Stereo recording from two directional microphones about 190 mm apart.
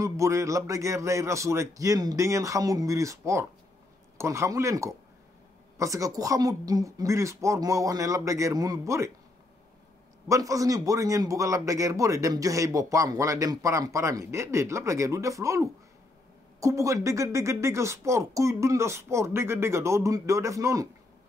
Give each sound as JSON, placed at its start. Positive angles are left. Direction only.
{"t": 0.0, "sound": "a man's voice", "side_deg": -15}
{"t": 10.2, "sound": "a man's voice", "side_deg": -15}